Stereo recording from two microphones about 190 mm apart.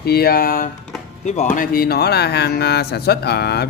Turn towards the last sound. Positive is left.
turn(degrees=60)  # may be behind; listen again after turning